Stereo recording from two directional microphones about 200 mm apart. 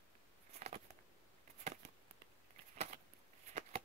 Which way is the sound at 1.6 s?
35° right (ahead or behind).